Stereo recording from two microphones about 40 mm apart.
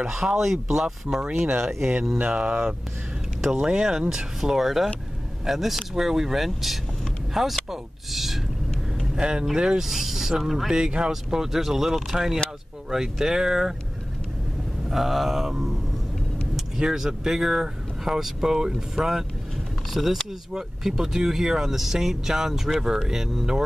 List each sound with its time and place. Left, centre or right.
0.0 s speech: centre
2.1 s a sound: right
3.5 s speech: centre
9.1 s speech: centre
9.8 s speech: centre
10.8 s speech: right
11.1 s speech: centre
14.9 s speech: centre
20.5 s speech: centre